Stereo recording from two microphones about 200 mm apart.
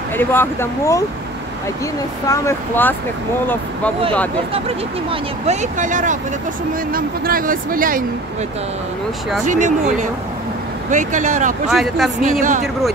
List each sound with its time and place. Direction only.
0.2 s speech: 10° left (ahead or behind)
2.2 s speech: 15° left (ahead or behind)
4.6 s speech: 30° right (ahead or behind)
9.5 s speech: 40° right (ahead or behind)
11.7 s speech: centre (ahead or behind)
12.3 s speech: 40° right (ahead or behind)